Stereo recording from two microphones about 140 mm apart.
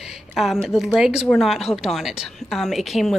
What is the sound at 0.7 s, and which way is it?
Speech, centre (ahead or behind).